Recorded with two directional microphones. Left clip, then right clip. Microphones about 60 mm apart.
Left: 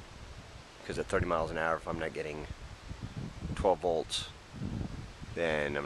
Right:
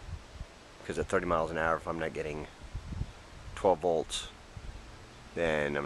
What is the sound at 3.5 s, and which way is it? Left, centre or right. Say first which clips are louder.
Speech: right 2 dB; centre.